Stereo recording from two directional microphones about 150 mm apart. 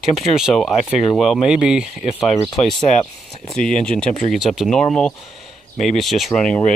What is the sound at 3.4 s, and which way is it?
Speech, 5° left (ahead or behind).